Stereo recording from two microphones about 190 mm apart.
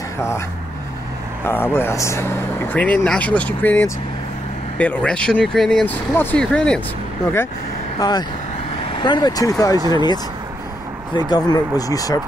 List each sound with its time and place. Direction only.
1.4 s speech: 10° left (ahead or behind)
8.0 s speech: 20° left (ahead or behind)
9.8 s speech: 25° right (ahead or behind)
11.2 s speech: 20° left (ahead or behind)